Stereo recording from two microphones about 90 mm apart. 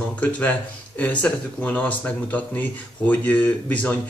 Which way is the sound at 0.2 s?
15° left (ahead or behind).